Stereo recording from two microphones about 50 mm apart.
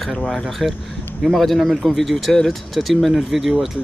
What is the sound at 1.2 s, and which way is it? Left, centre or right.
Speech, centre.